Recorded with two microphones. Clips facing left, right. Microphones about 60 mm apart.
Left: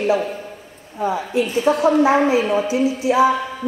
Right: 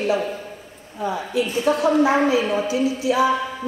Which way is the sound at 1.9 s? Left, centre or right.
Left.